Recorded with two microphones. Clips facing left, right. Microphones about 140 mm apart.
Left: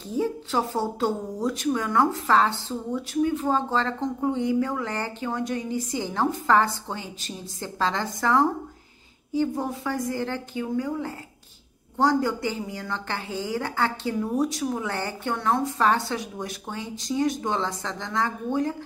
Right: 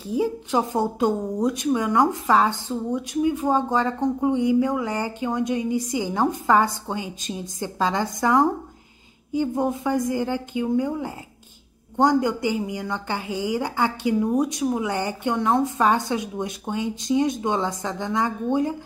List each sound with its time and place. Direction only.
0.0 s a woman's voice: 10° right (ahead or behind)